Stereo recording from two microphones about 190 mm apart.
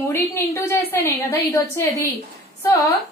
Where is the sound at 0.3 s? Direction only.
15° left (ahead or behind).